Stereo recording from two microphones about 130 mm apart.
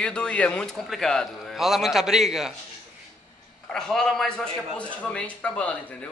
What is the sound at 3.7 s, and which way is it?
A man's voice, 5° left (ahead or behind).